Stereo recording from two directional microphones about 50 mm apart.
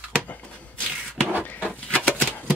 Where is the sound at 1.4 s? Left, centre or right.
Left.